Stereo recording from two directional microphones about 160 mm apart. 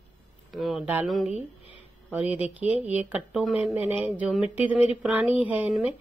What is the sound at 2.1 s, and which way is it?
Speech, 10° right (ahead or behind).